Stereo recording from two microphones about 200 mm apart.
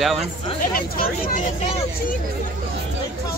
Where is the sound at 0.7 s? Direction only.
45° left (ahead or behind).